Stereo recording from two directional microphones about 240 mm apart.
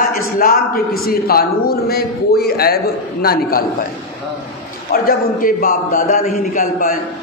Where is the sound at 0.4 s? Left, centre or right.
Left.